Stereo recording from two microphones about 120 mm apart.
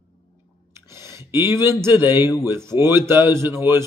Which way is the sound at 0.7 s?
25° right (ahead or behind).